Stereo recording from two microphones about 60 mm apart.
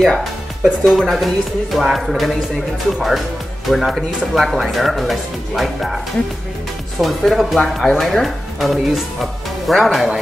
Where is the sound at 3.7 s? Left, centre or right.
Centre.